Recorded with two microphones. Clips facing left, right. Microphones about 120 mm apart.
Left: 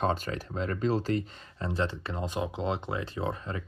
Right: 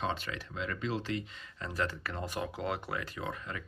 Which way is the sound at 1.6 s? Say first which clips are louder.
Left 4 dB; 25° left (ahead or behind).